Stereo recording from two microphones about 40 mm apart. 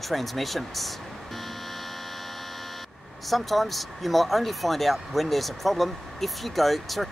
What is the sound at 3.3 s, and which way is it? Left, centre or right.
Speech, centre.